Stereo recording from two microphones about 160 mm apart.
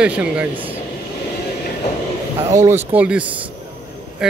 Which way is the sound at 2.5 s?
20° right (ahead or behind).